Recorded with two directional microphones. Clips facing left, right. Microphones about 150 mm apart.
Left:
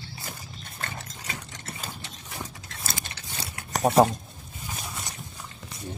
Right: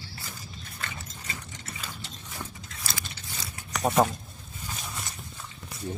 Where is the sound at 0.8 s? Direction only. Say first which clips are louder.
Left 3 dB; 60° left (ahead or behind).